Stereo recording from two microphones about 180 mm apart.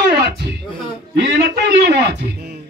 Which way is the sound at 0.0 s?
65° right (ahead or behind).